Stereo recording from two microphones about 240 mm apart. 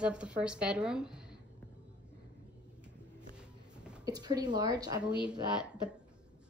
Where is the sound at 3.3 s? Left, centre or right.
Centre.